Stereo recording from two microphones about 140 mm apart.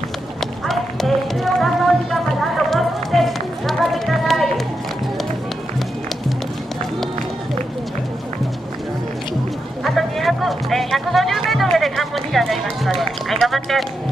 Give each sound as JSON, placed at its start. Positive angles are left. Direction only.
{"t": 0.4, "sound": "music", "side_deg": 0}
{"t": 9.8, "sound": "speech", "side_deg": 0}